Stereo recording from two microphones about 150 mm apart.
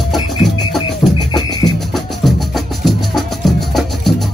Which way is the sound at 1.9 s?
Centre (ahead or behind).